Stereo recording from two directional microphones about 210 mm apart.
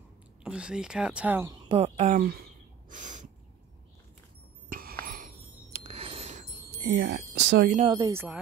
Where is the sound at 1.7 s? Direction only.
30° right (ahead or behind).